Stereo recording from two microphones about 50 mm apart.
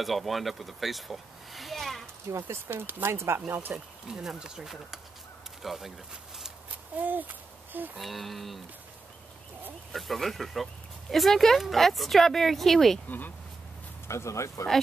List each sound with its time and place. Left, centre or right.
0.0 s speech: centre
2.3 s speech: right
3.4 s speech: right
3.7 s speech: centre
7.0 s speech: right
8.0 s speech: centre
9.9 s speech: centre
14.0 s speech: left